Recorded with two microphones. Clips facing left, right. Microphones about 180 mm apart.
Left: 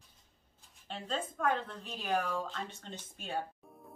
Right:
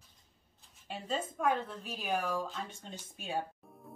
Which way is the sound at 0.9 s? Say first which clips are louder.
Right 1 dB; 10° right (ahead or behind).